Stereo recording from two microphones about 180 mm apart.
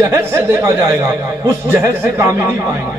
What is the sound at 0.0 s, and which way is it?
Speech, 15° right (ahead or behind).